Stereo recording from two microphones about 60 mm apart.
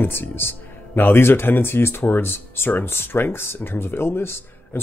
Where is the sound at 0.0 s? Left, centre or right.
Left.